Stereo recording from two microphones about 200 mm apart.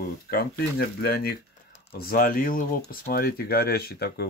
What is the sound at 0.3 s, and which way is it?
Speech, 50° left (ahead or behind).